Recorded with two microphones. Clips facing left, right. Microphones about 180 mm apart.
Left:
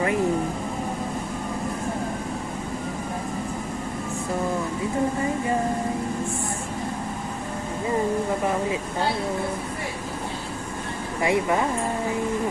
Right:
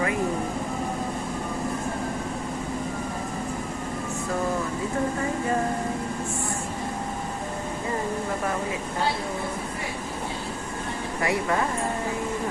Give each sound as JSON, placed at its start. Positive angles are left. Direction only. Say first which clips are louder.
{"t": 11.1, "sound": "speech", "louder": "left 4 dB", "side_deg": 20}